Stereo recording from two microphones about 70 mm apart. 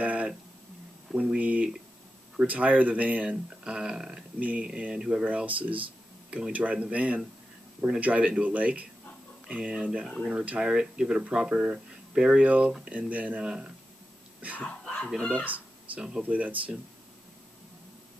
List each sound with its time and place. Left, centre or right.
0.0 s a sound: centre
1.1 s speech: centre
4.4 s speech: right
10.0 s speech: centre
10.3 s speech: right
10.6 s speech: centre
14.6 s a sound: centre
15.1 s speech: centre
15.4 s a sound: right
16.2 s speech: right